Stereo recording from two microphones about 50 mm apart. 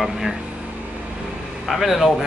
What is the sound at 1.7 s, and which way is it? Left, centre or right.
Speech, centre.